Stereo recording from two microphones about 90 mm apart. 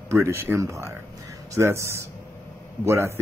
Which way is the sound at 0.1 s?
30° right (ahead or behind).